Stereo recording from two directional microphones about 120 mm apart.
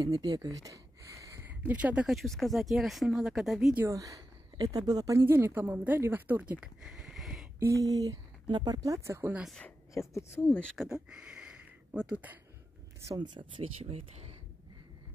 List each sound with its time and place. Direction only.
0.0 s a sound: 30° right (ahead or behind)
1.7 s speech: 10° right (ahead or behind)
2.0 s speech: centre (ahead or behind)
3.7 s a woman's voice: 25° right (ahead or behind)
5.2 s speech: 20° right (ahead or behind); by 7.4 s centre (ahead or behind)
7.6 s speech: 30° right (ahead or behind)
9.9 s speech: 25° left (ahead or behind)
10.8 s speech: 5° right (ahead or behind)
13.1 s speech: 40° right (ahead or behind)
13.8 s speech: 60° right (ahead or behind)